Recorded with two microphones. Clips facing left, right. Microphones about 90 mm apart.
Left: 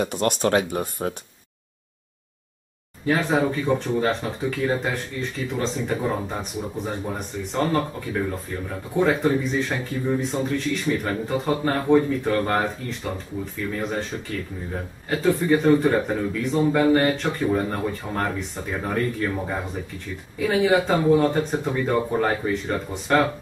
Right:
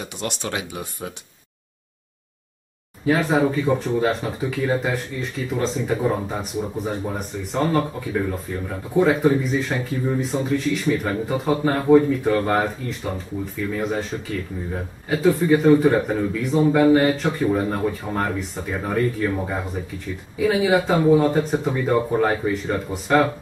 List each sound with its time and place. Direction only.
0.0 s speech: 50° left (ahead or behind)
3.1 s speech: 5° right (ahead or behind)